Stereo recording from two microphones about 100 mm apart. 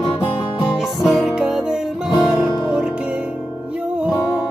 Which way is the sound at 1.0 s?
5° right (ahead or behind).